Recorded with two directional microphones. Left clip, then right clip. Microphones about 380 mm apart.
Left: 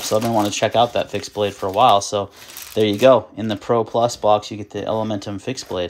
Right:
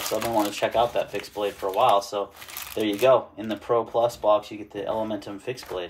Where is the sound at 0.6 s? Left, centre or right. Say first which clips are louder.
Left 6 dB; left.